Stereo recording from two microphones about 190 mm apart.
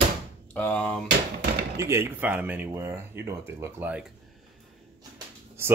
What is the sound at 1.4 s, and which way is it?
Chopping, 55° right (ahead or behind).